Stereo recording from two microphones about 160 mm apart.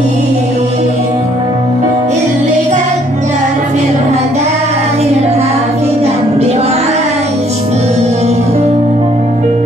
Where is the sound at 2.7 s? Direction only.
50° right (ahead or behind).